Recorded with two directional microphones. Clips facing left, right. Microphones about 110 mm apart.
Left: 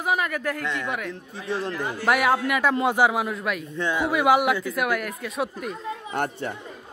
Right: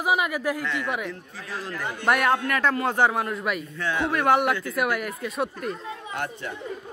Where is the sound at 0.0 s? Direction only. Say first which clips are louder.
Right 1 dB; 10° right (ahead or behind).